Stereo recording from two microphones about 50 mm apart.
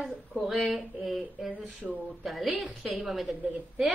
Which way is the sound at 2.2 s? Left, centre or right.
Centre.